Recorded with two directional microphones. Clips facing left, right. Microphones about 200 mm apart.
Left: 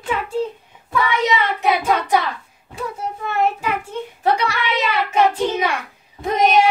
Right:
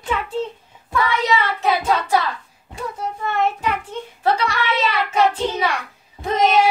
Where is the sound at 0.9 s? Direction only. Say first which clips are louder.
Left 1 dB; 15° left (ahead or behind).